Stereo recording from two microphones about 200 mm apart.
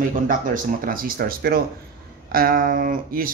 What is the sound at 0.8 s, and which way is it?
Speech, 45° right (ahead or behind).